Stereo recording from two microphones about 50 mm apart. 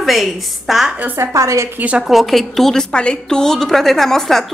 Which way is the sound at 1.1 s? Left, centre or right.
Right.